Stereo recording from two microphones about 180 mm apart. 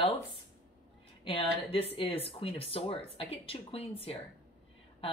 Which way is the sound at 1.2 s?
30° left (ahead or behind).